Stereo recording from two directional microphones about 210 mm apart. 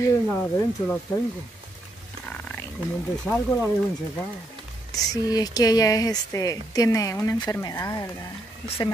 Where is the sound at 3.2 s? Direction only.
5° left (ahead or behind).